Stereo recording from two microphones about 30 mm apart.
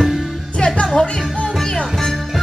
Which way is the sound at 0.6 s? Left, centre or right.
Left.